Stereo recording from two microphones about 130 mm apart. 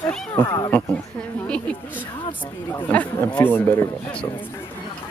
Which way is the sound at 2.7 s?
10° left (ahead or behind).